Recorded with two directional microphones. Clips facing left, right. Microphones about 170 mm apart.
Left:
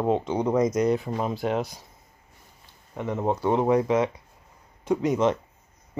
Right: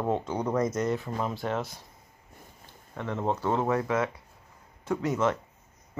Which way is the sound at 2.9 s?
10° left (ahead or behind).